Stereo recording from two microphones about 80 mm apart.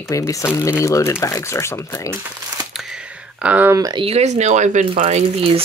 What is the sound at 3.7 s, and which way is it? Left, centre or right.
Speech, right.